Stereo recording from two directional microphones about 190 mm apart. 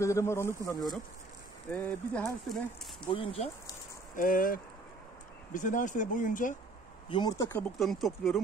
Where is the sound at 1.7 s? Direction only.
10° left (ahead or behind).